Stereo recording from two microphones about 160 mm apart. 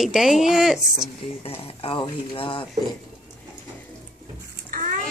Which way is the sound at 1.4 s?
35° left (ahead or behind).